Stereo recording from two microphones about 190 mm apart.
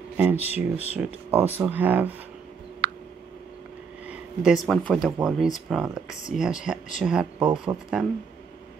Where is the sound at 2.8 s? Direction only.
65° right (ahead or behind).